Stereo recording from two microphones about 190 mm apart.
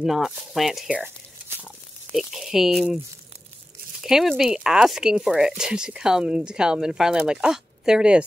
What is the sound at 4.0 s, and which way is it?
Speech, centre (ahead or behind).